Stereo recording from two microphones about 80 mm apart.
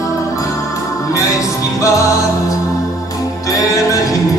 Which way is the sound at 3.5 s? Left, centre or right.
Left.